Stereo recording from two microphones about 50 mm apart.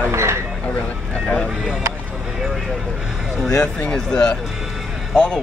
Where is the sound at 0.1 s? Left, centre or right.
Right.